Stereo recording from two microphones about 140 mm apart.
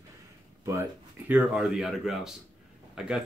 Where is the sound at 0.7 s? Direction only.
15° right (ahead or behind).